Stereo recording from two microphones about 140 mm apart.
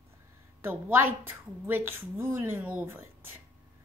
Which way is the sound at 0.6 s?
15° right (ahead or behind).